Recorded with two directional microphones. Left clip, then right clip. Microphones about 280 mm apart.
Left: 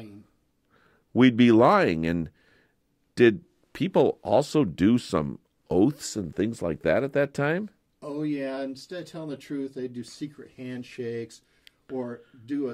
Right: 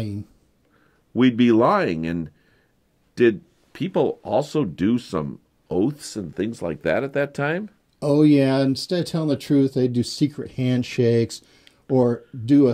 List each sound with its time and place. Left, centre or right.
1.1 s speech: left
6.1 s speech: left
8.0 s speech: centre